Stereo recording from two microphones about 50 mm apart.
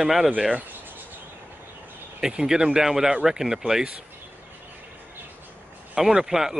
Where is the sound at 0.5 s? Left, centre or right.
Right.